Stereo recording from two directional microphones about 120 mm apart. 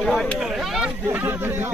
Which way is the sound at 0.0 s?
5° left (ahead or behind).